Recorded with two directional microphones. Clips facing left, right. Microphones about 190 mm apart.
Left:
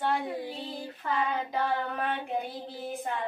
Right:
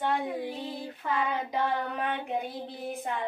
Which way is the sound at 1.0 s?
15° right (ahead or behind).